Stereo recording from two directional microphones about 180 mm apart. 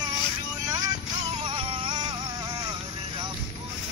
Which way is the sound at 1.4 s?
30° right (ahead or behind).